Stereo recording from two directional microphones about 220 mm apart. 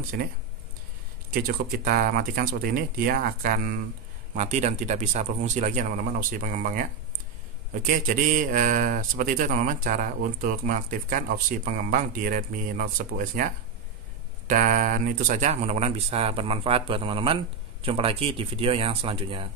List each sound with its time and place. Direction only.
1.3 s speech: 40° right (ahead or behind)
14.5 s speech: 40° right (ahead or behind)